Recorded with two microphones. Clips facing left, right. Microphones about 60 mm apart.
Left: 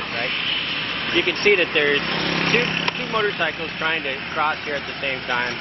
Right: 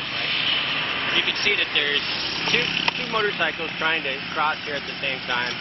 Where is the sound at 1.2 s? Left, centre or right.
Left.